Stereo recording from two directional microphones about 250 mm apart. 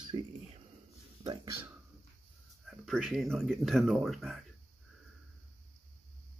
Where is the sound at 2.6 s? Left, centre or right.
Centre.